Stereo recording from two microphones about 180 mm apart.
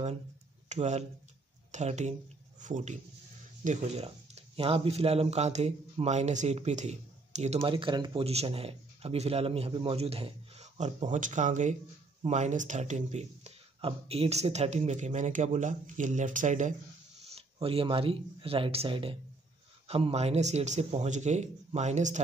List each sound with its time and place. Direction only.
0.7 s speech: 40° right (ahead or behind)
17.3 s speech: 35° right (ahead or behind)